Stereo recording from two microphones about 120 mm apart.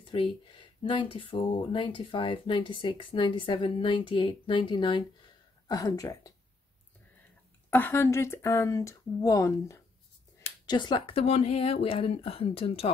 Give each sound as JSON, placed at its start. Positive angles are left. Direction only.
{"t": 0.0, "sound": "speech", "side_deg": 45}
{"t": 7.7, "sound": "speech", "side_deg": 20}
{"t": 10.7, "sound": "speech", "side_deg": 40}